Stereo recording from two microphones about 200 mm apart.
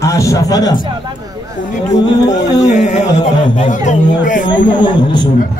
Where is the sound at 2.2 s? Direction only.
20° left (ahead or behind).